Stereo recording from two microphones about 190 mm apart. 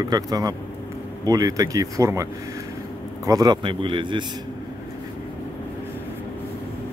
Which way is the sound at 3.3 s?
20° right (ahead or behind).